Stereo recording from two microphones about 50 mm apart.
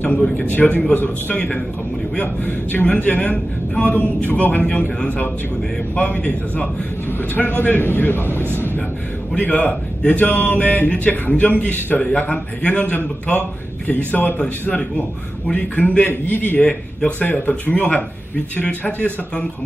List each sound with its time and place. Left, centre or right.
0.4 s speech: left
2.1 s a man's voice: left
9.4 s speech: left
13.8 s speech: left